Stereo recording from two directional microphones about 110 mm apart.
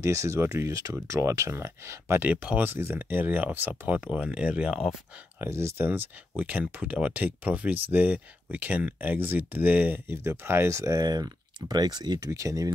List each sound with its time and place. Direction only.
0.0 s speech: 25° right (ahead or behind); by 4.9 s 5° right (ahead or behind)
5.4 s speech: 25° right (ahead or behind); by 12.3 s 40° right (ahead or behind)
12.3 s speech: 30° right (ahead or behind)